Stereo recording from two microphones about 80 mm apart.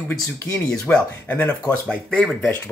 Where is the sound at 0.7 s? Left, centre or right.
Centre.